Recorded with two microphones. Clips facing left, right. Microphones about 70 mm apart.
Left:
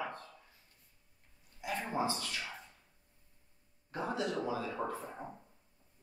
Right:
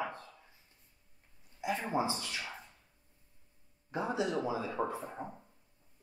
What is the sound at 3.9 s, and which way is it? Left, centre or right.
Speech, centre.